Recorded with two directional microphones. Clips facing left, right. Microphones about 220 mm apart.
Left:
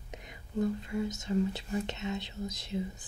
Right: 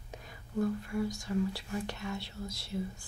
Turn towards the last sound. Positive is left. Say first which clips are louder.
# left 2 dB
turn(degrees=20)  # may be behind; listen again after turning